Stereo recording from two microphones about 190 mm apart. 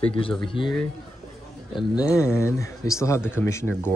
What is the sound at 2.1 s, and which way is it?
Speech, 15° left (ahead or behind).